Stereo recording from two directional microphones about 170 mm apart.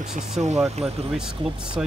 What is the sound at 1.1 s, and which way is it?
Speech, 5° right (ahead or behind).